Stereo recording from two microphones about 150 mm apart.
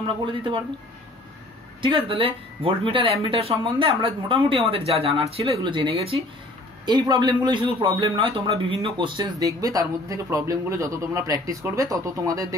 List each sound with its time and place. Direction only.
0.2 s speech: 35° right (ahead or behind)
1.8 s a man's voice: 35° right (ahead or behind)